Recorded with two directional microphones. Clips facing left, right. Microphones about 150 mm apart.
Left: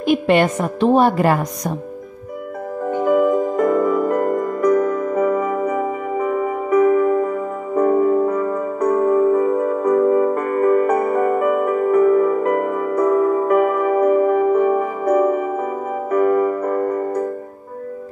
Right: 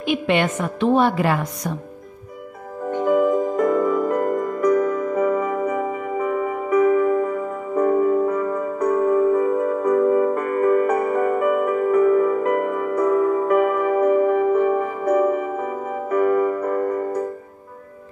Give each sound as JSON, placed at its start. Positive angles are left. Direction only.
{"t": 0.0, "sound": "a woman's voice", "side_deg": 40}
{"t": 3.1, "sound": "music", "side_deg": 55}